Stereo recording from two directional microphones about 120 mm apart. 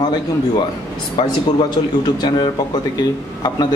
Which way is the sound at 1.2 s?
40° left (ahead or behind).